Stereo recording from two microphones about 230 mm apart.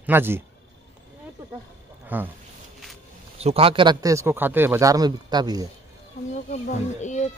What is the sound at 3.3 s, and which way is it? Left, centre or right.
Speech, right.